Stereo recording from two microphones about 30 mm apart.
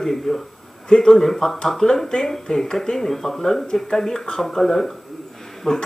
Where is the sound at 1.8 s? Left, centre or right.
Left.